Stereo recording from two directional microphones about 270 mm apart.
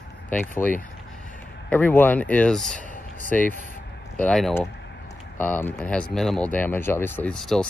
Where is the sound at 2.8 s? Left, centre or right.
Right.